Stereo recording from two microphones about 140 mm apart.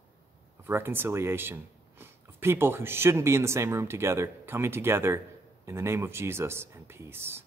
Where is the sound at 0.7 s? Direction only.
15° right (ahead or behind).